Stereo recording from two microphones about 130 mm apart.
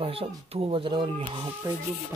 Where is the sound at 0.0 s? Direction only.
45° right (ahead or behind).